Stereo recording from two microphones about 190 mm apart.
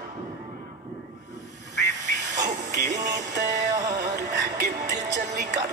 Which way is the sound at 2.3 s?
40° right (ahead or behind).